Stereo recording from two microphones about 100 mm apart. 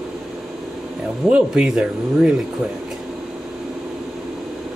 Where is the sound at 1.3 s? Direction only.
10° right (ahead or behind).